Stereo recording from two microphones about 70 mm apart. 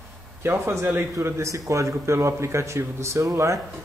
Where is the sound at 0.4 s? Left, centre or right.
Right.